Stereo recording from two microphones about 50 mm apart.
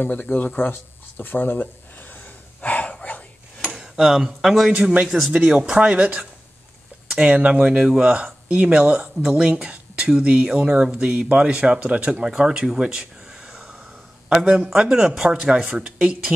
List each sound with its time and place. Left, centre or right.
0.2 s speech: left
0.6 s a sound: left
3.9 s speech: centre
4.7 s speech: right
5.0 s speech: centre
5.5 s speech: centre
5.8 s speech: right